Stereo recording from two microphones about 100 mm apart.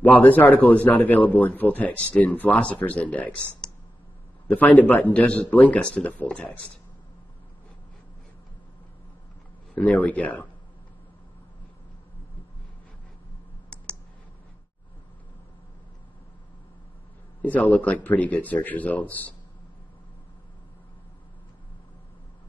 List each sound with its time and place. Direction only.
0.0 s a man's voice: 15° left (ahead or behind)
9.8 s a man's voice: 15° left (ahead or behind)
17.4 s a man's voice: 15° left (ahead or behind)